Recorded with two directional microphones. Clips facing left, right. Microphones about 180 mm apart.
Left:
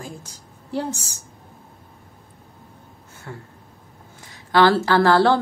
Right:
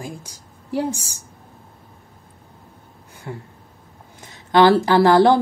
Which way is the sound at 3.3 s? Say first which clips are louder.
Right 4 dB; 20° right (ahead or behind).